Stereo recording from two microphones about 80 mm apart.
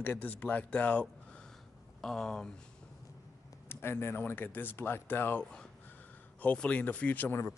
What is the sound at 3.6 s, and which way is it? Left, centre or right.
Speech, left.